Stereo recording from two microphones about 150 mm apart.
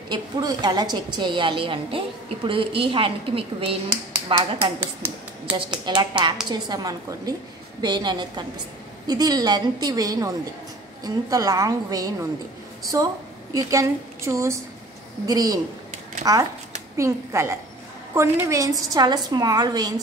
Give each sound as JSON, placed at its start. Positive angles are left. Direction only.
{"t": 0.1, "sound": "a woman's voice", "side_deg": -25}
{"t": 5.0, "sound": "speech", "side_deg": -10}
{"t": 5.9, "sound": "a woman's voice", "side_deg": -30}